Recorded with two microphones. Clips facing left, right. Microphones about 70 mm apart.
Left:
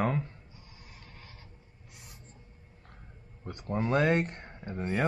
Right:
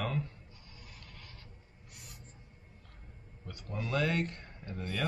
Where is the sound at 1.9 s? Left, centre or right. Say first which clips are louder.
Even; left.